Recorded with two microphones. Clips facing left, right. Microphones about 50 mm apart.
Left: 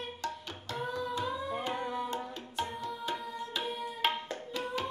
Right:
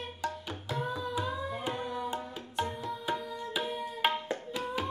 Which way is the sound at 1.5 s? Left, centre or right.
Centre.